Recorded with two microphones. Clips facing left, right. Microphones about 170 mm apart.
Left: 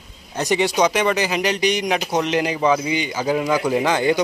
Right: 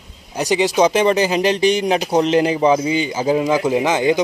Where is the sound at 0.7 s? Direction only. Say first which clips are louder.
Right 7 dB; 30° right (ahead or behind).